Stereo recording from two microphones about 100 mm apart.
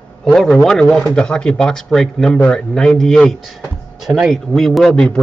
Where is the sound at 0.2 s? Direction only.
5° left (ahead or behind).